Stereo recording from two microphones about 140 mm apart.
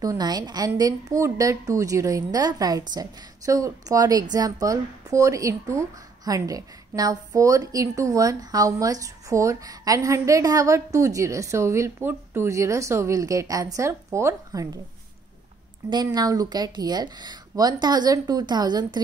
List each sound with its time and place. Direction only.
0.0 s a woman's voice: 25° right (ahead or behind)
15.8 s speech: 20° right (ahead or behind)
16.2 s a woman's voice: 30° right (ahead or behind)